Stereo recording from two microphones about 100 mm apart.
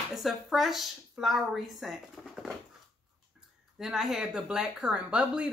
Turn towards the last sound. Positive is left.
turn(degrees=-10)  # may be behind; listen again after turning